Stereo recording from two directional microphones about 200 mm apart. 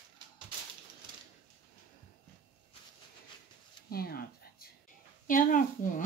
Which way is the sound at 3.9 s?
50° left (ahead or behind).